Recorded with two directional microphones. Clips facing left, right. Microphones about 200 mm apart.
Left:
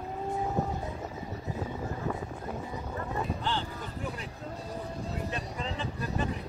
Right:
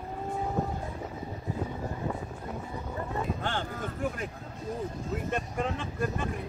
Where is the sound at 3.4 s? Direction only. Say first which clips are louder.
Right 1 dB; 50° right (ahead or behind).